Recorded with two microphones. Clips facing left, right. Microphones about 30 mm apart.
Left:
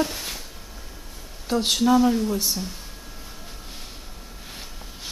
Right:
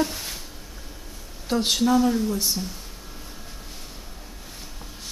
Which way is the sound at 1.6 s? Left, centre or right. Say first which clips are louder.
Left 2 dB; centre.